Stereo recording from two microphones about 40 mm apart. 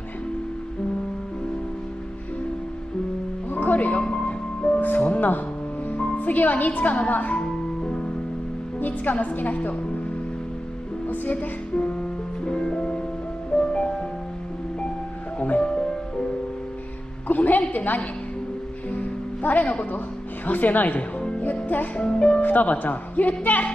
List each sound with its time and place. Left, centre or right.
3.4 s music: left
3.7 s music: left
4.0 s music: centre
4.7 s music: left
6.1 s a woman's voice: left
7.3 s music: left
8.7 s a woman's voice: left
11.3 s music: left
15.6 s music: centre
17.3 s a woman's voice: left
18.9 s music: left
20.4 s speech: left
22.0 s speech: left
22.4 s speech: left